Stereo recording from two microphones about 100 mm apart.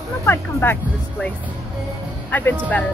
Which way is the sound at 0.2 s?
25° left (ahead or behind).